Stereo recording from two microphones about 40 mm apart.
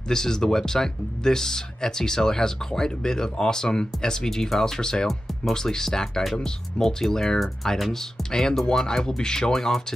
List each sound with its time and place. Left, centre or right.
0.1 s speech: centre